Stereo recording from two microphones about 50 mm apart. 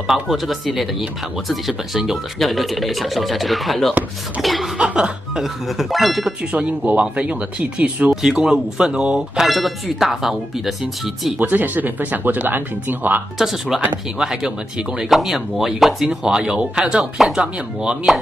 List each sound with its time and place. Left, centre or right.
0.3 s speech: centre
2.3 s speech: centre
4.7 s speech: centre
5.4 s speech: centre
6.5 s speech: right
8.1 s speech: centre
9.4 s speech: centre
11.3 s speech: right
13.4 s speech: centre
18.1 s speech: centre